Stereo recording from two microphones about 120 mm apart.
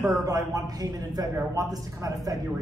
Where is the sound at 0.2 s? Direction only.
30° right (ahead or behind).